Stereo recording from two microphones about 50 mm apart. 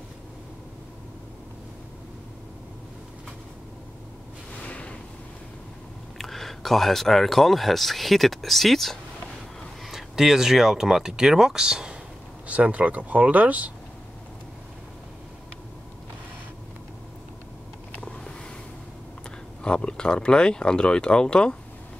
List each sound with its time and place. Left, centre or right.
4.6 s a sound: left
6.1 s speech: centre
12.4 s speech: right
19.6 s speech: centre